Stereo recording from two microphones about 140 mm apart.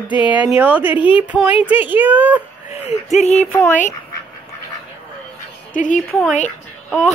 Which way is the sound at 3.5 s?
10° left (ahead or behind).